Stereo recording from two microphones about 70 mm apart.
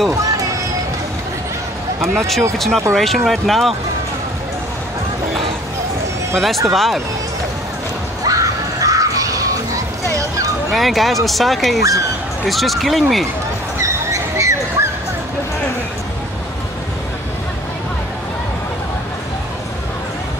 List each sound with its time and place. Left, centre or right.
2.1 s speech: centre
6.3 s speech: centre
8.3 s crowd: right
10.7 s speech: centre
13.7 s a sound: right